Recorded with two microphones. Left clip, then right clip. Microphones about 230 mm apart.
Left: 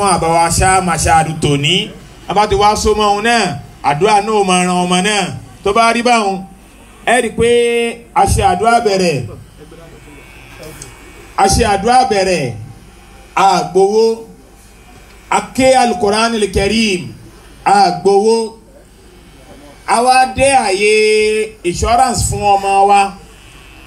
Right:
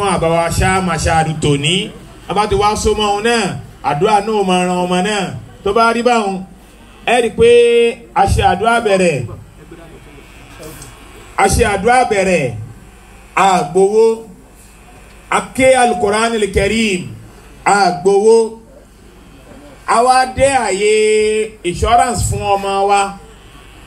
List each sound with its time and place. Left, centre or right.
0.0 s a man's voice: left
11.3 s a man's voice: left
15.2 s a man's voice: left
19.9 s a man's voice: left